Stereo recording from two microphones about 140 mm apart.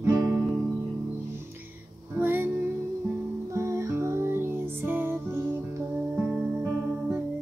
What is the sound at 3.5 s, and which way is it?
Music, 20° right (ahead or behind).